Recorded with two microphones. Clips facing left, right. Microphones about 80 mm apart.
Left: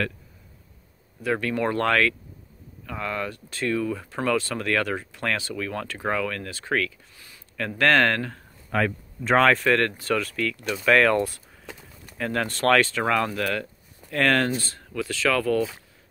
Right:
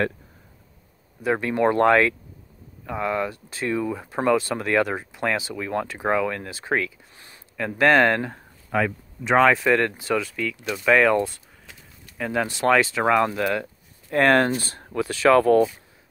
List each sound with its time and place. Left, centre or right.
1.2 s speech: right